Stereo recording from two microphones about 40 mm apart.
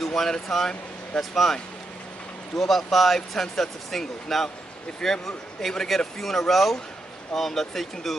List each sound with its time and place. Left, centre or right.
0.0 s speech: centre